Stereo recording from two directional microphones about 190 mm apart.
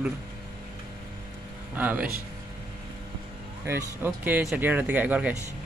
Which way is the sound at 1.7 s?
10° right (ahead or behind).